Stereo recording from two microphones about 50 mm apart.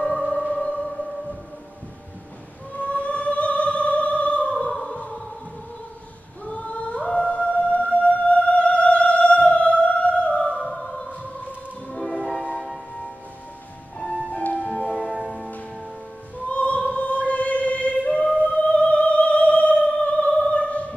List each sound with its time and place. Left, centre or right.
0.7 s music: centre
2.7 s opera: left
6.4 s singing: left
7.1 s music: centre
11.9 s music: centre
13.9 s music: centre
14.3 s music: left
15.0 s music: centre
16.4 s music: left
20.3 s opera: left